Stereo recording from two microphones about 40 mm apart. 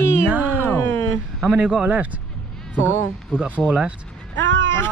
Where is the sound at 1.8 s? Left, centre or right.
Right.